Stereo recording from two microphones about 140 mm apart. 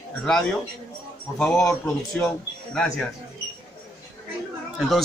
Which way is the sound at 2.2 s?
5° left (ahead or behind).